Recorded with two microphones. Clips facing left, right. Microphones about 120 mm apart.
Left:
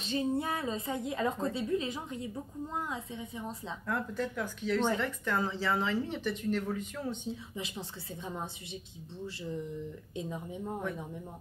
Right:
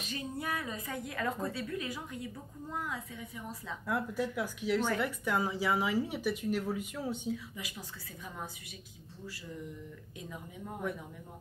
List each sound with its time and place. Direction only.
0.0 s a woman's voice: 25° left (ahead or behind)
3.8 s speech: 10° right (ahead or behind)
7.2 s a woman's voice: 25° left (ahead or behind)
10.1 s a woman's voice: 25° left (ahead or behind)